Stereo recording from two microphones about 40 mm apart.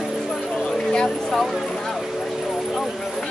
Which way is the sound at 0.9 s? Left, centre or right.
Centre.